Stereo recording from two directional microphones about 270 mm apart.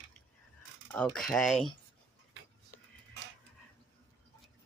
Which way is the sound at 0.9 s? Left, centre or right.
Centre.